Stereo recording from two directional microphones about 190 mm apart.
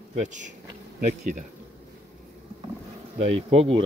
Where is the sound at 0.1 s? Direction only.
40° right (ahead or behind).